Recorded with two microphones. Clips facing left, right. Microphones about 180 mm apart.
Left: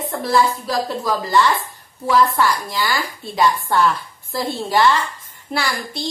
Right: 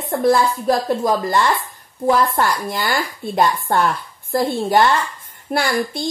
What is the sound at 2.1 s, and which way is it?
Speech, 50° right (ahead or behind).